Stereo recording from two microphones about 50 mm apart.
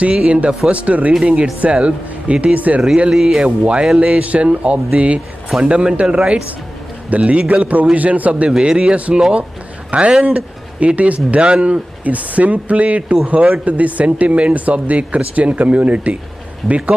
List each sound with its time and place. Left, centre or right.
0.0 s speech: right
3.1 s speech: centre
3.4 s speech: right
8.5 s speech: centre